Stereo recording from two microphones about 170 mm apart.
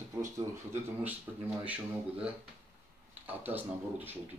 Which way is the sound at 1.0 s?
10° right (ahead or behind).